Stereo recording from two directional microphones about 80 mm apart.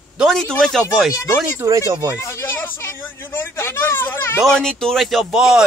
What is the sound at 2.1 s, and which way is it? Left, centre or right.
Speech, left.